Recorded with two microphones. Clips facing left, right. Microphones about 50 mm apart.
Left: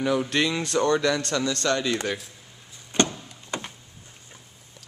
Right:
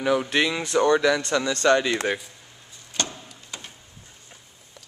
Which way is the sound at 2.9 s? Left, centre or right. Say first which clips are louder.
Left 7 dB; left.